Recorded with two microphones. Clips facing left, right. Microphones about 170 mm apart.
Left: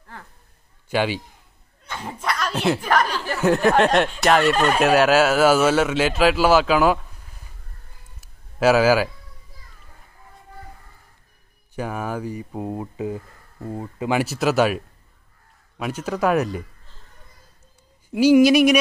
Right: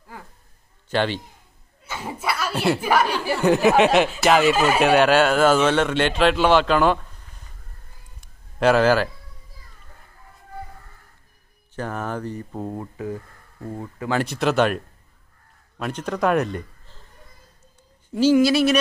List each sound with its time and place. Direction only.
0.8 s a man's voice: 10° left (ahead or behind)
1.9 s speech: 5° right (ahead or behind)
8.2 s a sound: 5° left (ahead or behind)
11.7 s speech: 10° left (ahead or behind)
14.2 s speech: 5° left (ahead or behind)
15.8 s speech: 5° left (ahead or behind)
18.1 s speech: 15° left (ahead or behind)